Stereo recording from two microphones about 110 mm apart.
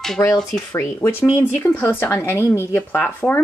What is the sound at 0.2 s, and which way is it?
Speech, 30° left (ahead or behind).